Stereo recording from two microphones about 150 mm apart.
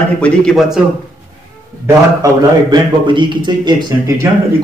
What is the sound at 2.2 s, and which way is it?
A man's voice, 30° right (ahead or behind).